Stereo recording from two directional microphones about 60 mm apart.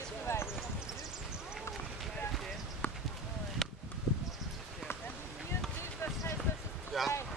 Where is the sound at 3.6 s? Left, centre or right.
Centre.